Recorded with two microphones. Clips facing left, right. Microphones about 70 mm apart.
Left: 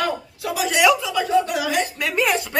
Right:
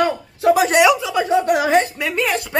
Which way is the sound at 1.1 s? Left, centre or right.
Right.